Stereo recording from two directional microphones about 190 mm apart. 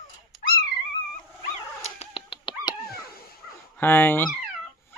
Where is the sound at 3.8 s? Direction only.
10° left (ahead or behind).